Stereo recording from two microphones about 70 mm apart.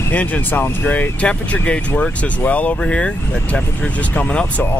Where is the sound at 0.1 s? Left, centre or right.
Left.